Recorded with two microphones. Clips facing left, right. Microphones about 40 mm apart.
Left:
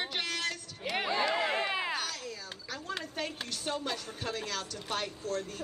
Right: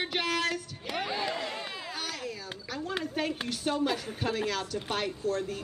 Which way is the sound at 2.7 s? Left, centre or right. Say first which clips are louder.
Right 5 dB; centre.